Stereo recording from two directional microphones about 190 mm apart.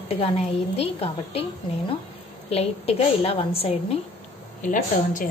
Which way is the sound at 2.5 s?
30° left (ahead or behind).